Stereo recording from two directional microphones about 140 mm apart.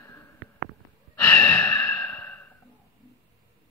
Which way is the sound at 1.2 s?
10° left (ahead or behind).